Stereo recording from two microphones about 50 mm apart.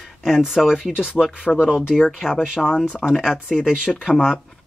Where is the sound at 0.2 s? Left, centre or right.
Centre.